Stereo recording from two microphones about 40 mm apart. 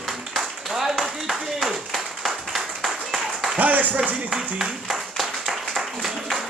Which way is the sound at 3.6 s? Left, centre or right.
Right.